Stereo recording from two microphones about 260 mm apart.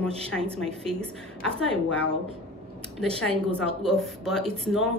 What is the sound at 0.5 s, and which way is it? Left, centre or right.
Speech, centre.